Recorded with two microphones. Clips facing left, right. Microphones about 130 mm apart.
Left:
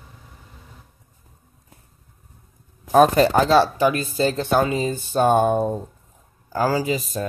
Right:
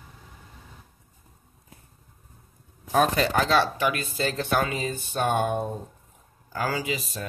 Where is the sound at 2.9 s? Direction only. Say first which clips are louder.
Left 8 dB; 45° left (ahead or behind).